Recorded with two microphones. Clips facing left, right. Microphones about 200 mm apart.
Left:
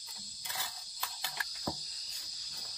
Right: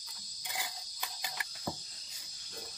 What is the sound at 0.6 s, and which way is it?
Cricket, 15° right (ahead or behind).